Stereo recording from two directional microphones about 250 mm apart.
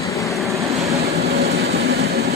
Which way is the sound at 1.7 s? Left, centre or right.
Right.